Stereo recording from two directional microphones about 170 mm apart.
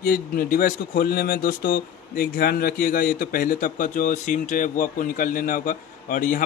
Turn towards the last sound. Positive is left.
turn(degrees=55)  # may be behind; listen again after turning